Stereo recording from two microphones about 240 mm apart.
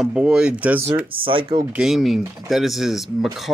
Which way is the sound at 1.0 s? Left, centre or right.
Right.